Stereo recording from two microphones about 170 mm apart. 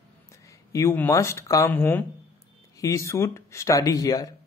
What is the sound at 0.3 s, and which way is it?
Speech, 15° left (ahead or behind).